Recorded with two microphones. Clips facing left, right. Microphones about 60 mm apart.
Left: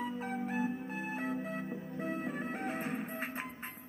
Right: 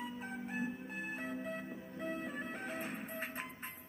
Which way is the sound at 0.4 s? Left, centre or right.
Left.